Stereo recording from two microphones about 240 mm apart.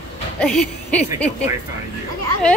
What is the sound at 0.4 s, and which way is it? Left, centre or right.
Speech, centre.